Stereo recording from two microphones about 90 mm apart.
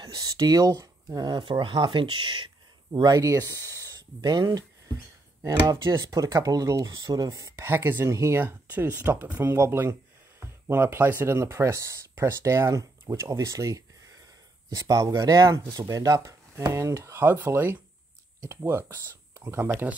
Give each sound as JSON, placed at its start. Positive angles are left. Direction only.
{"t": 0.0, "sound": "speech", "side_deg": -45}
{"t": 2.9, "sound": "speech", "side_deg": -50}
{"t": 19.7, "sound": "speech", "side_deg": -15}